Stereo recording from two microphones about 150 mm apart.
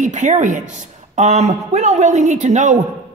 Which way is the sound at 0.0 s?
55° right (ahead or behind).